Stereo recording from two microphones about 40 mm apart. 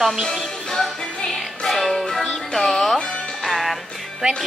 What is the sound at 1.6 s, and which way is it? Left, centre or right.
Music, centre.